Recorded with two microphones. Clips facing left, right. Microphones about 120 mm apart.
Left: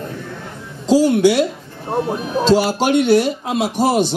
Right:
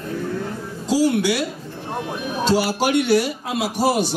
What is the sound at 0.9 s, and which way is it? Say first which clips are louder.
Speech: left 6 dB; 25° left (ahead or behind).